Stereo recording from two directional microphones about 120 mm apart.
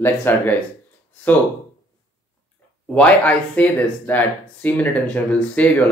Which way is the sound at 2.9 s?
10° left (ahead or behind).